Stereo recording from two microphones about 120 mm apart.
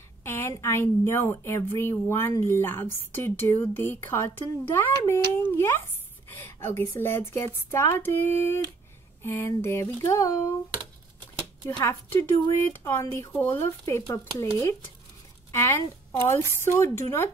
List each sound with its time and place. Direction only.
0.2 s a woman's voice: 20° left (ahead or behind)
11.8 s speech: 20° left (ahead or behind)
15.5 s speech: 20° left (ahead or behind)